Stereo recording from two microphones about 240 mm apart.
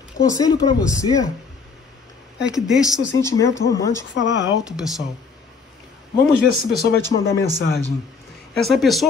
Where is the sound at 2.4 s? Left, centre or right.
Centre.